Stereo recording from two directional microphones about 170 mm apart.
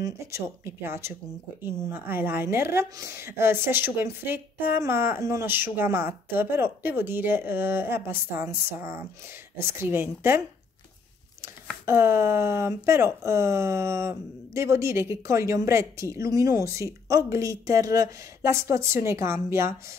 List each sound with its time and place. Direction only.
0.0 s speech: 15° right (ahead or behind)
11.4 s speech: 15° right (ahead or behind)